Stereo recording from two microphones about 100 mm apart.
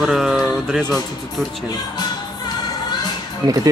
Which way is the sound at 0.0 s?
5° right (ahead or behind).